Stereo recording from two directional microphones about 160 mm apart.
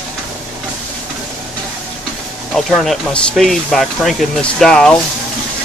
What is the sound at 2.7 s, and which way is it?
Speech, centre (ahead or behind).